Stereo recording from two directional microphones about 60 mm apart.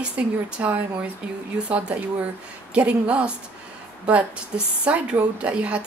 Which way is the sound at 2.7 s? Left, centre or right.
Right.